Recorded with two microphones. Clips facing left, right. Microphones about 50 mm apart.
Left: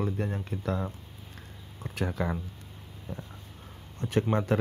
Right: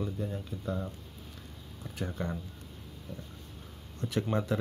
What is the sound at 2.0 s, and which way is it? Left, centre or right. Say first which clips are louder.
Speech: left 5 dB; left.